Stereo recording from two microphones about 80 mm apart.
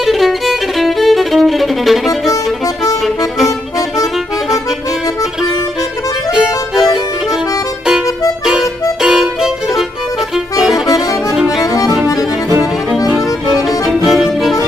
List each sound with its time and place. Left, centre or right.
0.0 s violin: centre
6.3 s music: centre
9.0 s violin: centre
10.9 s music: left
11.3 s accordion: centre
11.6 s music: left
13.7 s music: centre